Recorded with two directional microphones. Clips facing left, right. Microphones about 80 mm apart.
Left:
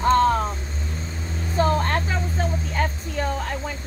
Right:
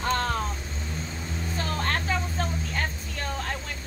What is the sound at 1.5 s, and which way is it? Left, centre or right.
Vehicle, left.